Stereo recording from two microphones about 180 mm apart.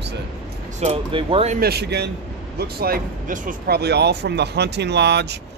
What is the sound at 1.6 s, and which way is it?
Speech, 65° right (ahead or behind).